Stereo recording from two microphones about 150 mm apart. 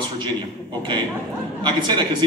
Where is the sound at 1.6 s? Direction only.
30° right (ahead or behind).